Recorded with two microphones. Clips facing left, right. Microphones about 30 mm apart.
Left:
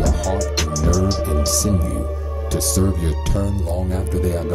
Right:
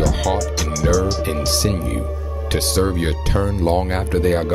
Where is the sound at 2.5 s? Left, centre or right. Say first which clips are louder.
Right 2 dB; right.